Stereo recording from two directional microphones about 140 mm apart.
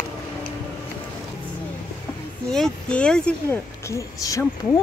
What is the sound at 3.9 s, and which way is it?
Speech, 25° left (ahead or behind).